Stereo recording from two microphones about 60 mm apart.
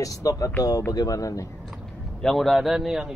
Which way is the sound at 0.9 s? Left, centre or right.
Left.